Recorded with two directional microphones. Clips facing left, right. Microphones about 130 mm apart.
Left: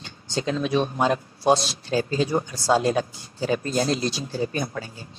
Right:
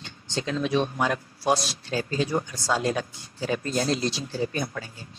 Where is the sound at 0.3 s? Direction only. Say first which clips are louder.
Left 2 dB; 30° left (ahead or behind).